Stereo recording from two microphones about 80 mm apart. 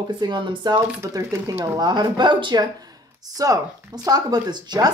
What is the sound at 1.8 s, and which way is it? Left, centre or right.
Speech, right.